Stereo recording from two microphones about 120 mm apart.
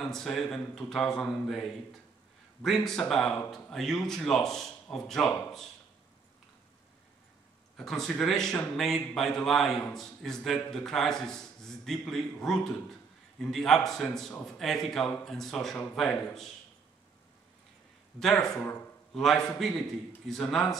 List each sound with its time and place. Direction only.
0.0 s speech: 5° left (ahead or behind)
7.7 s speech: 5° left (ahead or behind)
18.2 s speech: 5° left (ahead or behind)
18.6 s a man's voice: 15° left (ahead or behind)
19.1 s a man's voice: 5° left (ahead or behind)